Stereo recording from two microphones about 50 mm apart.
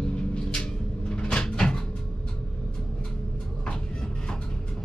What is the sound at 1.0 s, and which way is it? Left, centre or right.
Cupboard open or close, centre.